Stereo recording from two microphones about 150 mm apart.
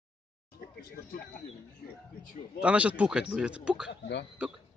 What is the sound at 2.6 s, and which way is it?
Speech, 10° right (ahead or behind).